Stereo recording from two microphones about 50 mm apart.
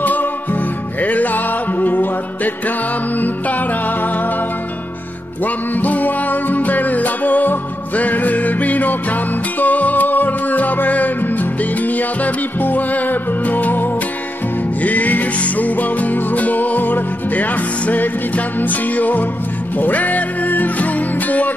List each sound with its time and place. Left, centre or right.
0.0 s music: left
5.4 s music: left